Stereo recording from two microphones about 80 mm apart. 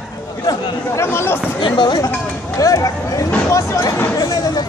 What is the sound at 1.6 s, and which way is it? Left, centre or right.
Speech, left.